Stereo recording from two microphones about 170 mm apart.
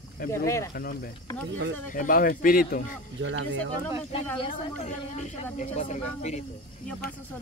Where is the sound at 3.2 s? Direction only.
90° right.